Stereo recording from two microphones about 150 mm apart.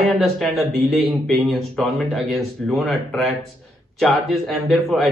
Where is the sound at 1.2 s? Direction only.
Centre (ahead or behind).